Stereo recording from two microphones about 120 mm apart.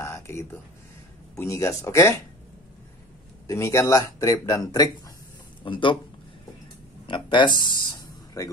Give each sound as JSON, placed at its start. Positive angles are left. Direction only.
{"t": 0.0, "sound": "a sound", "side_deg": 25}
{"t": 1.3, "sound": "speech", "side_deg": 25}
{"t": 3.4, "sound": "speech", "side_deg": 25}
{"t": 5.6, "sound": "speech", "side_deg": 45}
{"t": 7.1, "sound": "speech", "side_deg": 40}